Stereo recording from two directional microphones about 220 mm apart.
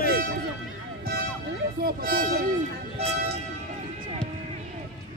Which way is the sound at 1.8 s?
45° right (ahead or behind).